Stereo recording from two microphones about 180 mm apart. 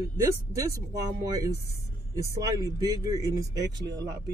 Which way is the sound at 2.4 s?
20° right (ahead or behind).